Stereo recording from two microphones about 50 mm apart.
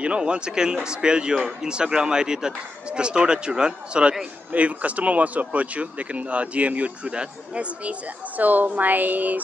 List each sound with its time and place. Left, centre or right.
0.0 s a man's voice: right
4.5 s a woman's voice: right